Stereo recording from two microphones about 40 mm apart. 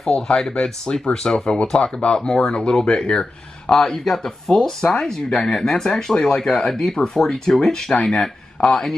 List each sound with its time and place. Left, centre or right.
0.1 s speech: centre